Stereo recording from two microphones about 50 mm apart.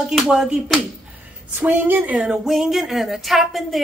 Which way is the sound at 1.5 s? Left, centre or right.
Right.